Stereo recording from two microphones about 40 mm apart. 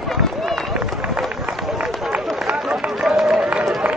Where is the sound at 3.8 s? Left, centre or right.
Right.